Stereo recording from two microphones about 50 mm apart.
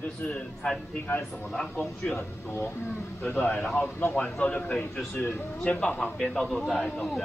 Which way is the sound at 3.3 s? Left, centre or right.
Left.